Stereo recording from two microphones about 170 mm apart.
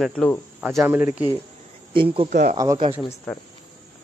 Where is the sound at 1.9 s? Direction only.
30° right (ahead or behind).